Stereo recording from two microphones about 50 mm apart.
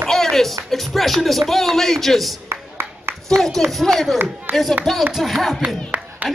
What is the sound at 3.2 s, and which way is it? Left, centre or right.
A man's voice, centre.